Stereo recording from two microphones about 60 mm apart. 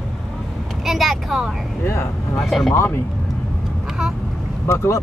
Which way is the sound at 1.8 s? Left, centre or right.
Left.